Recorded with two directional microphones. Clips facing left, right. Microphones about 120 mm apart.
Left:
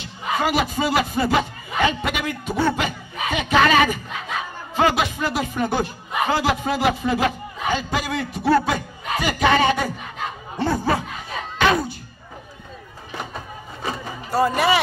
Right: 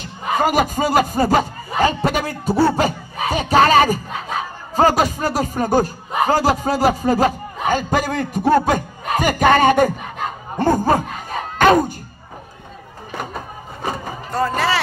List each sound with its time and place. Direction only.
0.0 s speech: 45° right (ahead or behind)
14.3 s speech: 10° left (ahead or behind)